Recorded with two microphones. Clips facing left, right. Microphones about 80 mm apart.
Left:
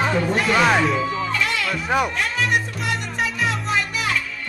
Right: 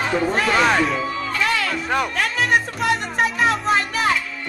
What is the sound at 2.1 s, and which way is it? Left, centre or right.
Music, right.